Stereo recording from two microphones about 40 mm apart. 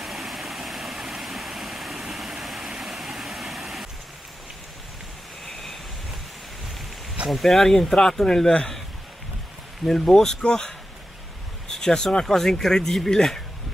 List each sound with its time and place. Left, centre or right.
0.0 s waterfall: centre
2.7 s vehicle: centre
5.4 s waves: centre
7.2 s speech: centre
10.0 s speech: centre